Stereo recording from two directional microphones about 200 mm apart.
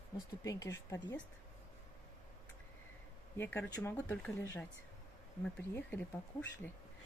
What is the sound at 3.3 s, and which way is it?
Speech, 10° left (ahead or behind).